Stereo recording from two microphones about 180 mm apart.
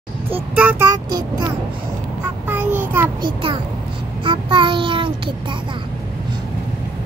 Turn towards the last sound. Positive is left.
turn(degrees=-30)  # may be behind; listen again after turning